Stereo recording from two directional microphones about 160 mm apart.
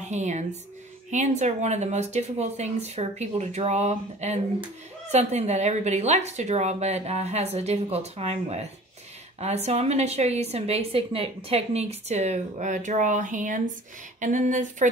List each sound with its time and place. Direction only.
0.0 s a woman's voice: 45° right (ahead or behind)